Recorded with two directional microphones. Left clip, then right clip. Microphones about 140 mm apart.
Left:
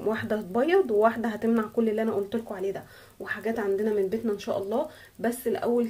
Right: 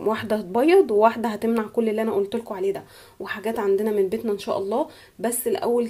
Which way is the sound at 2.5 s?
40° right (ahead or behind).